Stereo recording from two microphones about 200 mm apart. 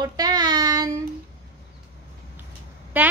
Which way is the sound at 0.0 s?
20° right (ahead or behind).